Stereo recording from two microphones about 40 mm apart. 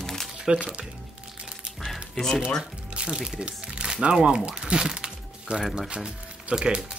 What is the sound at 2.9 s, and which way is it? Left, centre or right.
Music, right.